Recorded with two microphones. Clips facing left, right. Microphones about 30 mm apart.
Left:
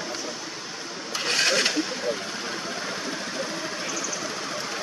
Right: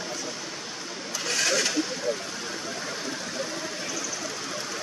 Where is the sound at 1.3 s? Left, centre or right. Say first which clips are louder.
Left 3 dB; left.